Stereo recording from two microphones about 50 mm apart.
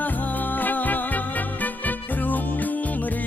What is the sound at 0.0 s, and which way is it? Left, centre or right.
Music, left.